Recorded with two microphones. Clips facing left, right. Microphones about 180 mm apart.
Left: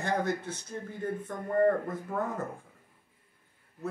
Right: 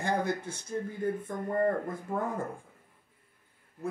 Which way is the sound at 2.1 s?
15° right (ahead or behind).